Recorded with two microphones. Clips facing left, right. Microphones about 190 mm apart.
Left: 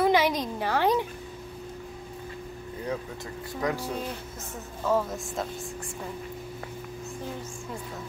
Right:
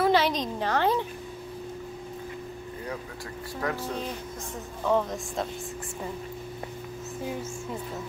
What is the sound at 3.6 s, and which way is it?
Speech, 10° left (ahead or behind).